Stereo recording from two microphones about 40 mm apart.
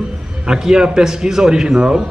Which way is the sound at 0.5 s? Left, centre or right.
Centre.